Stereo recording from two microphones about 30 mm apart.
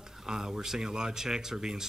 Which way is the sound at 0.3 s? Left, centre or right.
Right.